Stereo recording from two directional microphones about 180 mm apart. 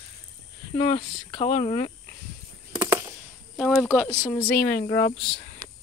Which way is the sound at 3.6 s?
5° left (ahead or behind).